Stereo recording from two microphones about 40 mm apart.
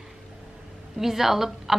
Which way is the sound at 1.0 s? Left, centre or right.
Centre.